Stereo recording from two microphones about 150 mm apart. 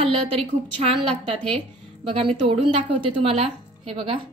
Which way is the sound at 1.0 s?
40° right (ahead or behind).